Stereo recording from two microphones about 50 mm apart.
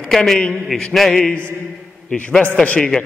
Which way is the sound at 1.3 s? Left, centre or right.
Right.